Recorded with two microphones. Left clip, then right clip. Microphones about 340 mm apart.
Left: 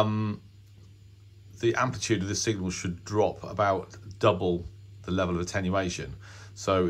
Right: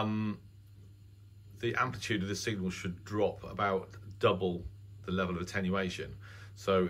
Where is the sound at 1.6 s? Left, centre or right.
Centre.